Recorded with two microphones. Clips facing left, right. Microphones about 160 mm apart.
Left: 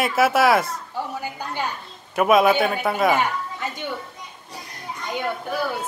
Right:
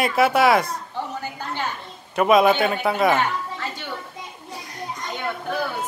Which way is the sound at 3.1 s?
15° left (ahead or behind).